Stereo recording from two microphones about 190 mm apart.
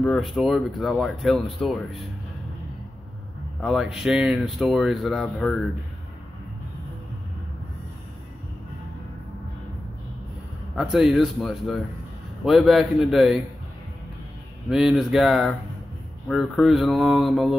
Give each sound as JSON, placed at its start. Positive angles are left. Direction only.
{"t": 0.0, "sound": "speech", "side_deg": 0}
{"t": 3.6, "sound": "speech", "side_deg": 0}
{"t": 10.8, "sound": "speech", "side_deg": -5}
{"t": 14.7, "sound": "speech", "side_deg": 0}